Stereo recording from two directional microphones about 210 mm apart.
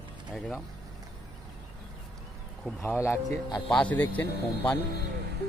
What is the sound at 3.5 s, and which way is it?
Speech, centre (ahead or behind).